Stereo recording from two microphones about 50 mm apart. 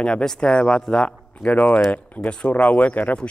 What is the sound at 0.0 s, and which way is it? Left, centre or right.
A man's voice, centre.